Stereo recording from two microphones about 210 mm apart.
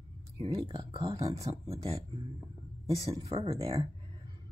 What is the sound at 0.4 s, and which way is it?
Speech, 20° right (ahead or behind).